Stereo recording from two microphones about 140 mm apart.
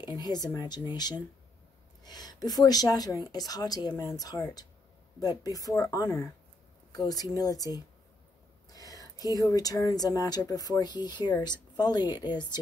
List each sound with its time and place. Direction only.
0.0 s speech: 30° left (ahead or behind)